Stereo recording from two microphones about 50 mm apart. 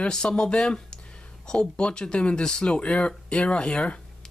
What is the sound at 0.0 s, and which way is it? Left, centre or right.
Speech, centre.